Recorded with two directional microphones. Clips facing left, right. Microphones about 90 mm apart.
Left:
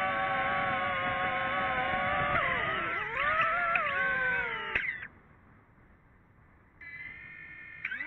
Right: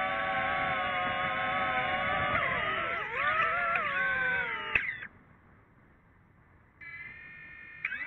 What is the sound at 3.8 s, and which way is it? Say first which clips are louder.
Wail: even; 10° left (ahead or behind).